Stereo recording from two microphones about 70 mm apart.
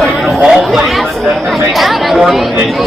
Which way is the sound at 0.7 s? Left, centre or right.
Centre.